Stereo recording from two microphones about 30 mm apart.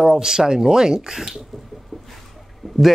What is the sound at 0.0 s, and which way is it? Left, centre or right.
Speech, centre.